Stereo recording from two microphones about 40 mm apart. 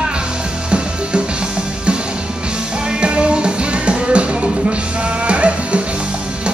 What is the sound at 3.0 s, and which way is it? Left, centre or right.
Music, right.